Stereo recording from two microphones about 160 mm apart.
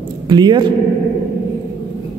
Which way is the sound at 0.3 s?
30° right (ahead or behind).